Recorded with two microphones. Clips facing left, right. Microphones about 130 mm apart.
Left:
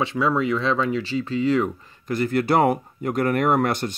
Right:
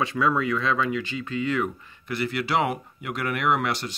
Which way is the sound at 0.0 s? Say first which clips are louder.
Left 2 dB; 25° left (ahead or behind).